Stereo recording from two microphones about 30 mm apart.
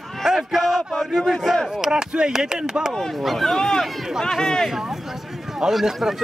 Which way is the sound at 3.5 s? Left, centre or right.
Centre.